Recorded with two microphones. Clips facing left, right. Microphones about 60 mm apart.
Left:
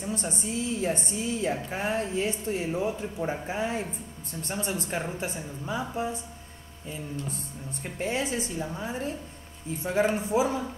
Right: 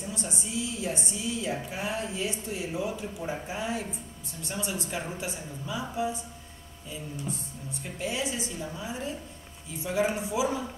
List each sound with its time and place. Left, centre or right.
0.1 s a woman's voice: left
8.0 s a woman's voice: left
10.1 s a woman's voice: left